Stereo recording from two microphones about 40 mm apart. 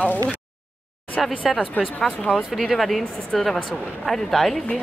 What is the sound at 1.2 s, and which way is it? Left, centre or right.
Speech, centre.